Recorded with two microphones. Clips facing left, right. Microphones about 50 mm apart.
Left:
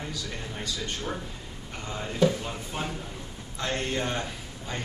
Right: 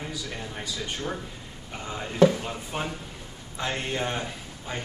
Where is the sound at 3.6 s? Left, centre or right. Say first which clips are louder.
Even; centre.